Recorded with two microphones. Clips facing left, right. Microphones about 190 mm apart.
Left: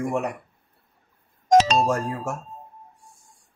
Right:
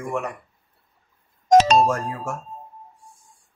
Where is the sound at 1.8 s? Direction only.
35° left (ahead or behind).